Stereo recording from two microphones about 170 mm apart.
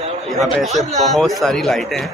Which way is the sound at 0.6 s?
Centre (ahead or behind).